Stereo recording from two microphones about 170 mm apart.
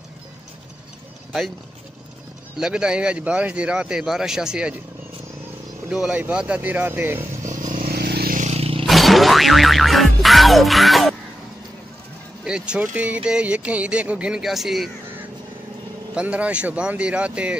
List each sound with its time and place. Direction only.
2.6 s speech: 5° right (ahead or behind)
5.9 s speech: 5° right (ahead or behind)
7.4 s vehicle: 50° right (ahead or behind)
7.8 s vehicle: 65° right (ahead or behind); by 8.8 s 35° right (ahead or behind)
8.8 s music: centre (ahead or behind)
12.4 s speech: 5° right (ahead or behind)
16.2 s speech: 10° right (ahead or behind)